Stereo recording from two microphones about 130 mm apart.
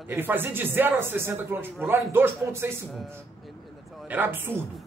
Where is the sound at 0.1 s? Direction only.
15° right (ahead or behind).